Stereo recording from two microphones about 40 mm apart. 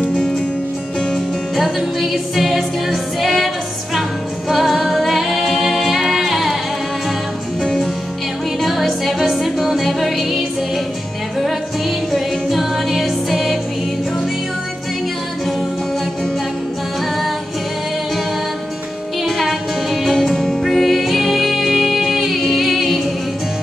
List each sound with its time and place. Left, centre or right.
1.1 s music: centre
5.2 s a capella: centre
8.5 s music: centre
12.1 s music: centre
19.2 s music: centre